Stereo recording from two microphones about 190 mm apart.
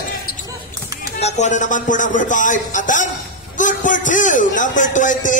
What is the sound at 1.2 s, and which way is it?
A man's voice, 35° left (ahead or behind).